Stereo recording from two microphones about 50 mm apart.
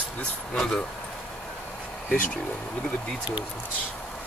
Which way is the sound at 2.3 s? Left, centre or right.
Left.